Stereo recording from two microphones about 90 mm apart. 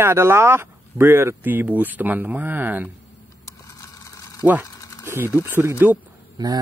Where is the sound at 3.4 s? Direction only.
35° left (ahead or behind).